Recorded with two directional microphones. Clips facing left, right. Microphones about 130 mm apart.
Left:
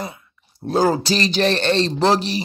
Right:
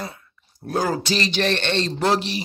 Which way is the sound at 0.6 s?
30° left (ahead or behind).